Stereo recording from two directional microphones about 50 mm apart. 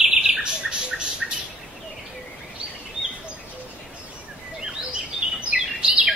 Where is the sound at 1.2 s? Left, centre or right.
Centre.